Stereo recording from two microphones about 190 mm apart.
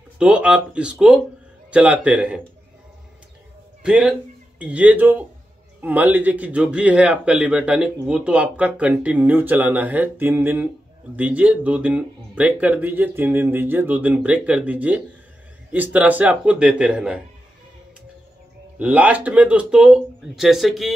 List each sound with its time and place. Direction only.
0.2 s a man's voice: 5° right (ahead or behind)
3.8 s a man's voice: 5° right (ahead or behind)
18.8 s speech: 5° right (ahead or behind)